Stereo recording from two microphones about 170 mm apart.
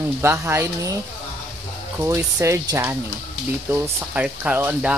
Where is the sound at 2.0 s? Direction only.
15° right (ahead or behind).